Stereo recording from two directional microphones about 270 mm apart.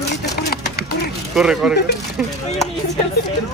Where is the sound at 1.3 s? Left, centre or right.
Centre.